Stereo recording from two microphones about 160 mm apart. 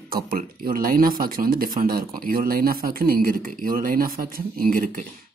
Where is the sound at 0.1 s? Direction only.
65° right (ahead or behind).